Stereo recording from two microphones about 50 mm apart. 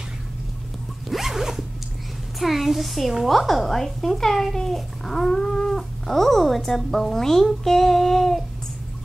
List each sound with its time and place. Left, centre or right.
1.1 s zipper: centre
2.3 s speech: centre